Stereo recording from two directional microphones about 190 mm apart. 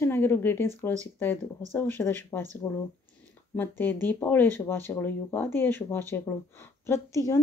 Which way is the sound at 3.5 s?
10° left (ahead or behind).